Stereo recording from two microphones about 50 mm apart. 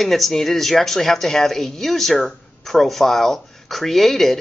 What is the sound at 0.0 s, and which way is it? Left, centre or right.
A woman's voice, centre.